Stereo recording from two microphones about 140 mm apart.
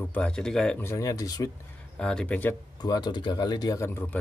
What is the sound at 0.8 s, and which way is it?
Speech, 20° left (ahead or behind).